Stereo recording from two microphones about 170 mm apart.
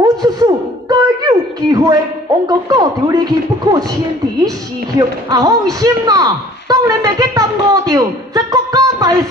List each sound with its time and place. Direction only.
0.0 s a sound: 25° right (ahead or behind)
2.4 s a man's voice: 20° right (ahead or behind)
5.3 s a man's voice: 20° right (ahead or behind)
8.5 s music: 20° right (ahead or behind)